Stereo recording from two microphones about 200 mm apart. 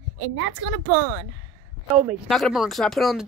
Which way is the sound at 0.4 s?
80° right.